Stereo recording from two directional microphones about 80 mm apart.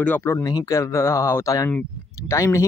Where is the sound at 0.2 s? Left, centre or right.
Left.